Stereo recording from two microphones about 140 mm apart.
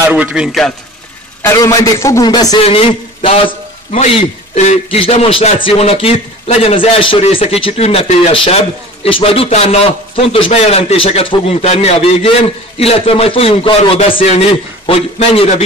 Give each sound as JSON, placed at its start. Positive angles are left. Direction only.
{"t": 0.1, "sound": "a man's voice", "side_deg": -10}
{"t": 1.4, "sound": "a man's voice", "side_deg": 25}
{"t": 2.6, "sound": "a sound", "side_deg": 45}
{"t": 4.1, "sound": "a man's voice", "side_deg": 50}